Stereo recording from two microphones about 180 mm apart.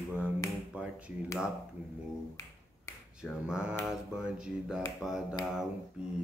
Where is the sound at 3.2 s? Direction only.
5° right (ahead or behind).